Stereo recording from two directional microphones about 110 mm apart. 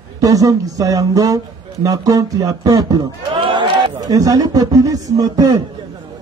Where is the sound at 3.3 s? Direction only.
50° right (ahead or behind).